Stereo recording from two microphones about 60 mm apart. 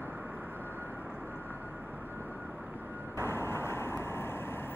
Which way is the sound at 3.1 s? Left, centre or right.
Left.